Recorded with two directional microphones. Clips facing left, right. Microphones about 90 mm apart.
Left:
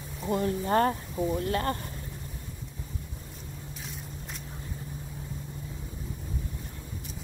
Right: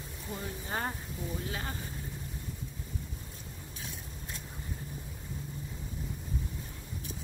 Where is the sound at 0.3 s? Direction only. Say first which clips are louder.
Left 12 dB; 75° left (ahead or behind).